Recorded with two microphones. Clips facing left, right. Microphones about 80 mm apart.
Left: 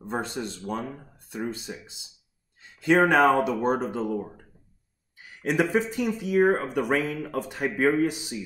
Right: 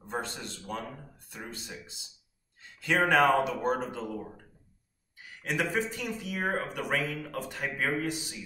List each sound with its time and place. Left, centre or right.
0.1 s speech: centre
3.1 s speech: left
5.4 s speech: left